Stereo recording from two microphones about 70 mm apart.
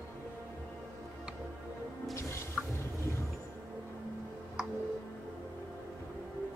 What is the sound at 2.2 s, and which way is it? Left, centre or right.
Music, left.